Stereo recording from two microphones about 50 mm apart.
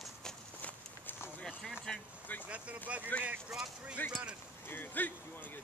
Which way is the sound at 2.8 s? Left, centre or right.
Right.